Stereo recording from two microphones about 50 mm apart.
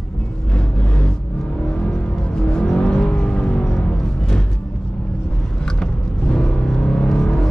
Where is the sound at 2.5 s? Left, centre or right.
Centre.